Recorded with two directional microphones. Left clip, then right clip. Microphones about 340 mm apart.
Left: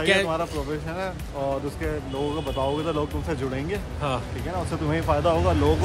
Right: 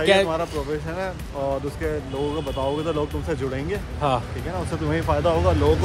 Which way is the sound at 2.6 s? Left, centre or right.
Centre.